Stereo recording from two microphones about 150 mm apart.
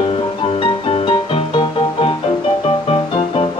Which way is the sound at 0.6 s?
35° left (ahead or behind).